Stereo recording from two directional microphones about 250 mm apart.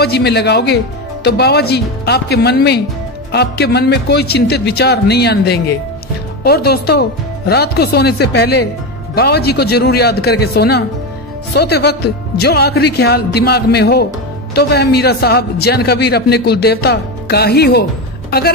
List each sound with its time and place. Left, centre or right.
0.0 s a man's voice: left